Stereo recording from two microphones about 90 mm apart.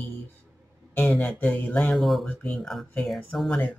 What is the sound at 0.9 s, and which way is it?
Speech, 25° left (ahead or behind).